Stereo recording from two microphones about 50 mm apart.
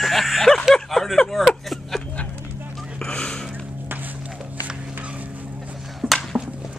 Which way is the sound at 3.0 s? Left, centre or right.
Centre.